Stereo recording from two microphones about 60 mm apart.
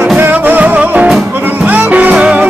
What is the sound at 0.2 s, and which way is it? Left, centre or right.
Music, right.